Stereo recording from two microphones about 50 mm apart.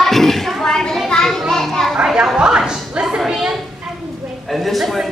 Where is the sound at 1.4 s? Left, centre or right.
Centre.